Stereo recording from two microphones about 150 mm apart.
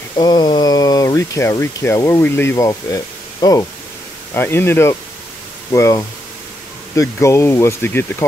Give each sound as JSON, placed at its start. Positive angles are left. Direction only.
{"t": 0.2, "sound": "speech", "side_deg": 30}